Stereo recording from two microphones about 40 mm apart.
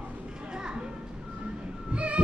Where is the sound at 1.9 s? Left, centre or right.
Right.